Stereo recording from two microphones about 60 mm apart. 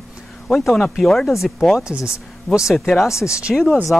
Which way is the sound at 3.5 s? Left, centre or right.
Centre.